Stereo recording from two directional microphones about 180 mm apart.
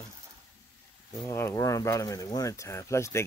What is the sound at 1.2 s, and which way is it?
Speech, 15° left (ahead or behind).